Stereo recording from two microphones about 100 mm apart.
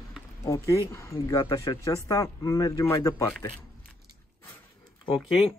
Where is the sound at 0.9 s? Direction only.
30° left (ahead or behind).